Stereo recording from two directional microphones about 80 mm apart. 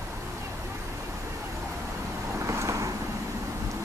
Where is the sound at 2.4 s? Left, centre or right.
Right.